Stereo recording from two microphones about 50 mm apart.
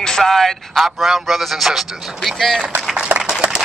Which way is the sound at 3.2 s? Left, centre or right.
Centre.